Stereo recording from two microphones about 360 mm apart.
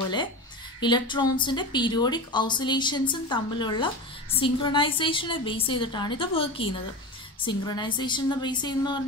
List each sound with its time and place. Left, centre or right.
0.7 s speech: centre